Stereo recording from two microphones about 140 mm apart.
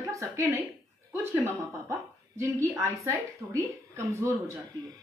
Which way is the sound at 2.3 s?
15° right (ahead or behind).